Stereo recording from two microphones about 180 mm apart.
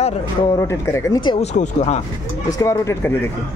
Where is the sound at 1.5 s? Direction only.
40° left (ahead or behind).